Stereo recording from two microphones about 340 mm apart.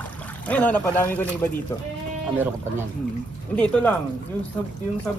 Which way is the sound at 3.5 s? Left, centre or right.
Centre.